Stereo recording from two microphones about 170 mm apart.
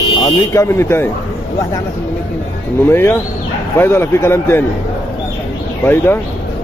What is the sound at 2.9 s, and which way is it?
Speech, 15° left (ahead or behind).